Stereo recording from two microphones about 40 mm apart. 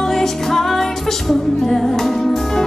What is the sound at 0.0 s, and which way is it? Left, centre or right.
Music, centre.